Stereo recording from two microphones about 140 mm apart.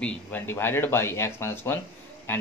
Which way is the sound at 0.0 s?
15° left (ahead or behind).